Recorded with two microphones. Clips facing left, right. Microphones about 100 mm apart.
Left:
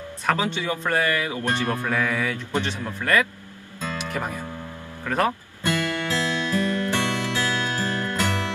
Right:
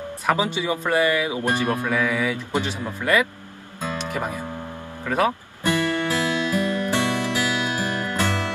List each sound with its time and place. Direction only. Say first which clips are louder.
0.3 s speech: right 2 dB; 10° right (ahead or behind)
5.0 s music: right 2 dB; 10° right (ahead or behind)